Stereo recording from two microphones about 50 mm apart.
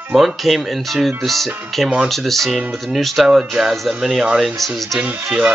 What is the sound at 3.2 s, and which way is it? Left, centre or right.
Speech, centre.